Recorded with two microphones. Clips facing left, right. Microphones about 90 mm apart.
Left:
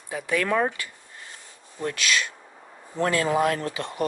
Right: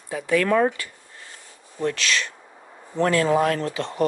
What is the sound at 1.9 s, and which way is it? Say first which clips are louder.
Speech: right 1 dB; 15° left (ahead or behind).